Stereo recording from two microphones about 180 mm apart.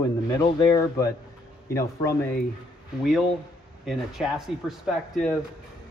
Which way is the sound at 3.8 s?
Centre (ahead or behind).